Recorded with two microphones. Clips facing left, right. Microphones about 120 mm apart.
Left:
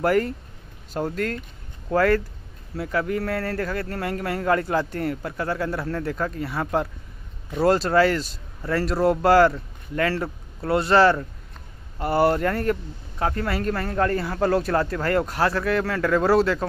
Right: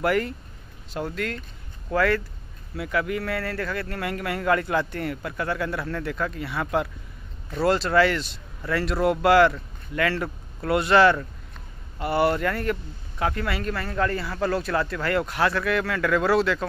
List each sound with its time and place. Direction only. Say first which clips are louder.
0.0 s speech: left 3 dB; 40° left (ahead or behind)